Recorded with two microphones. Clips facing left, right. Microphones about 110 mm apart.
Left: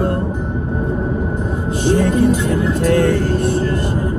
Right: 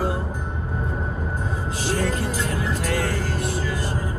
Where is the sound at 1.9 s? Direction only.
60° left (ahead or behind).